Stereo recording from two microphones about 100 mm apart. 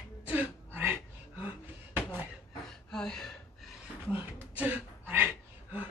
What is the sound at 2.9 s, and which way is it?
Gasp, 5° left (ahead or behind).